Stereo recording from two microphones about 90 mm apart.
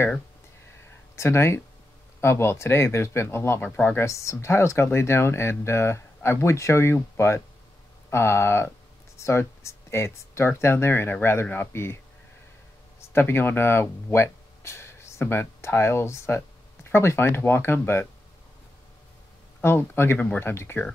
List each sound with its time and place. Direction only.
1.1 s speech: 30° left (ahead or behind)
3.6 s speech: 15° left (ahead or behind)
4.0 s speech: 35° left (ahead or behind)
13.1 s speech: 25° left (ahead or behind)
19.6 s speech: 25° left (ahead or behind)